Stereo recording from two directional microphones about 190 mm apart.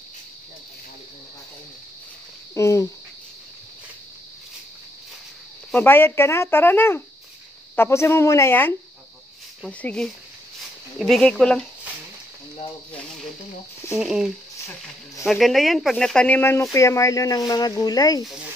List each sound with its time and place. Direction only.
2.5 s speech: 15° left (ahead or behind)
5.7 s speech: 10° left (ahead or behind)
13.9 s speech: 5° right (ahead or behind); by 18.2 s 20° left (ahead or behind)